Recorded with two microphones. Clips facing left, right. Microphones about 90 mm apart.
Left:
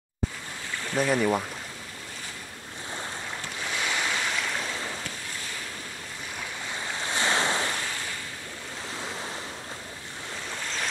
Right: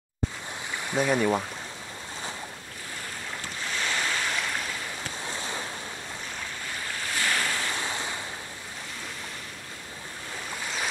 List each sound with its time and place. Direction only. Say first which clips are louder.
0.8 s speech: even; 10° right (ahead or behind)
3.7 s waves: even; 10° left (ahead or behind)
5.3 s waves: right 4 dB; 25° right (ahead or behind)
6.9 s waves: left 2 dB; 25° left (ahead or behind)
7.8 s waves: right 2 dB; 20° right (ahead or behind)